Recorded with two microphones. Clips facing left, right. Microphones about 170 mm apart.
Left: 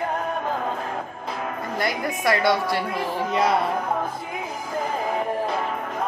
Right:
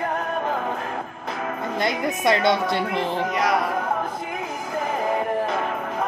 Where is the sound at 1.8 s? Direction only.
20° right (ahead or behind).